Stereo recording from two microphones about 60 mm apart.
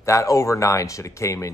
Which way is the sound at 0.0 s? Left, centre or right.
Left.